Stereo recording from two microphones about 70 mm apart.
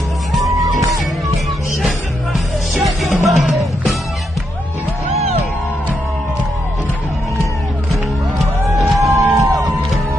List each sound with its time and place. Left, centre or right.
0.5 s music: right
2.8 s music: centre
8.6 s music: right